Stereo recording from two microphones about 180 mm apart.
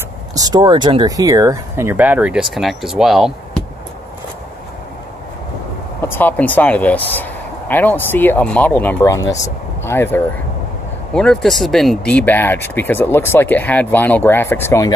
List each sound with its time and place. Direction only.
0.4 s speech: 25° right (ahead or behind); by 3.6 s centre (ahead or behind)
5.9 s speech: 10° left (ahead or behind)